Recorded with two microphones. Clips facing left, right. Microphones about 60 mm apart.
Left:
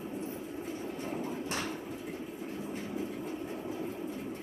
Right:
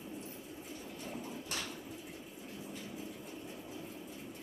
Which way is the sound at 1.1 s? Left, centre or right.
Left.